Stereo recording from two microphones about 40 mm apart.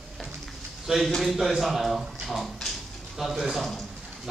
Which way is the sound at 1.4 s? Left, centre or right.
Centre.